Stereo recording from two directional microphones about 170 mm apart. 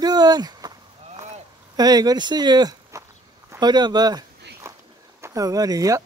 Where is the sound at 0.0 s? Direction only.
25° right (ahead or behind).